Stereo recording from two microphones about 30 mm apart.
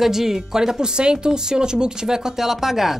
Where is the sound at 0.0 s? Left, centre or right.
Centre.